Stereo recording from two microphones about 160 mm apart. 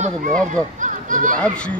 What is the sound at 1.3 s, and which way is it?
Speech, 5° left (ahead or behind).